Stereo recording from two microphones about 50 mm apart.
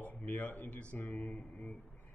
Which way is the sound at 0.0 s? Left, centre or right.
Left.